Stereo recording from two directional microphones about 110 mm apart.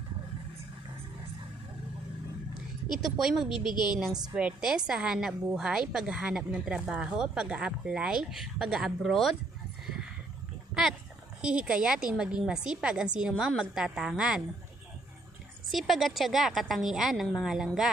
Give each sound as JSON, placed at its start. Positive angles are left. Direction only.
{"t": 3.0, "sound": "speech", "side_deg": -5}
{"t": 3.6, "sound": "a woman's voice", "side_deg": 40}
{"t": 4.4, "sound": "speech", "side_deg": -10}
{"t": 11.4, "sound": "a woman's voice", "side_deg": -10}
{"t": 15.7, "sound": "speech", "side_deg": 0}